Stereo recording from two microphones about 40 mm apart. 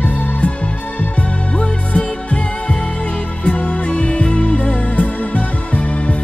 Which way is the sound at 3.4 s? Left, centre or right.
Left.